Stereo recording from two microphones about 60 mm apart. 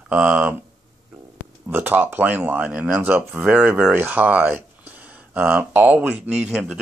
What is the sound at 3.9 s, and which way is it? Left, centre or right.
Speech, right.